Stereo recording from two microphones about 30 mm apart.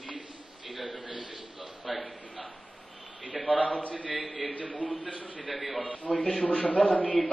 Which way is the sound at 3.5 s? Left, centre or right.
Left.